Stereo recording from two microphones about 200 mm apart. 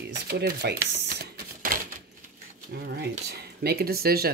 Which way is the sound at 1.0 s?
50° right (ahead or behind).